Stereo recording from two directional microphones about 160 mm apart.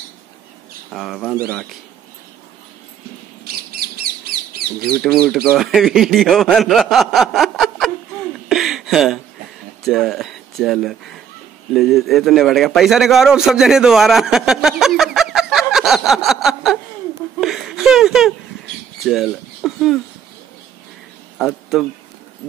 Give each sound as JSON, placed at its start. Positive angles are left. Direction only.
{"t": 0.9, "sound": "speech", "side_deg": 0}
{"t": 3.7, "sound": "bird", "side_deg": -75}
{"t": 4.8, "sound": "speech", "side_deg": 5}
{"t": 8.5, "sound": "a sound", "side_deg": 0}
{"t": 9.8, "sound": "a man's voice", "side_deg": 0}
{"t": 17.4, "sound": "a sound", "side_deg": 0}
{"t": 19.0, "sound": "speech", "side_deg": 0}
{"t": 21.4, "sound": "speech", "side_deg": 0}